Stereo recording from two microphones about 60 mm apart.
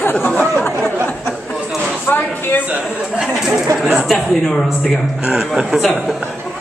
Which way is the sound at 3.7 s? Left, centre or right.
Centre.